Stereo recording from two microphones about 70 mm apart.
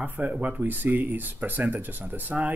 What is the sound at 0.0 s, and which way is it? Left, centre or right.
Speech, right.